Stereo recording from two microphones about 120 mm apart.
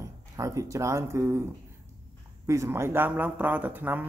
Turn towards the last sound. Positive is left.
turn(degrees=-15)  # may be behind; listen again after turning